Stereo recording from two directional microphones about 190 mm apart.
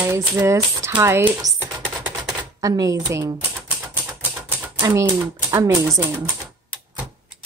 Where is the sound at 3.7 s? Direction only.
10° right (ahead or behind).